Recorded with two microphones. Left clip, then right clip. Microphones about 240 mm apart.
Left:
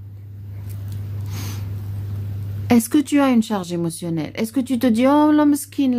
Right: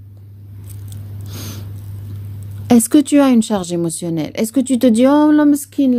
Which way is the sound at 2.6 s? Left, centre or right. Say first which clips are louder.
Right 5 dB; right.